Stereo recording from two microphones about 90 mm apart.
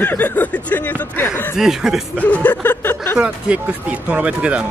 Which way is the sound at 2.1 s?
15° left (ahead or behind).